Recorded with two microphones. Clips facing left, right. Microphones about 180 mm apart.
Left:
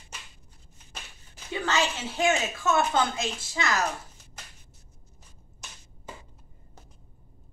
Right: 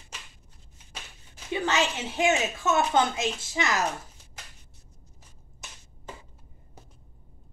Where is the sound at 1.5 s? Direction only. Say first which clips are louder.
Right 1 dB; 20° right (ahead or behind).